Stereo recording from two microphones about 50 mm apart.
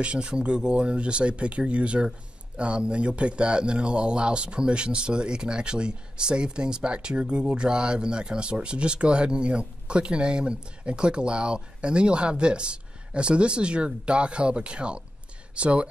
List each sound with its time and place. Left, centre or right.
0.0 s speech: centre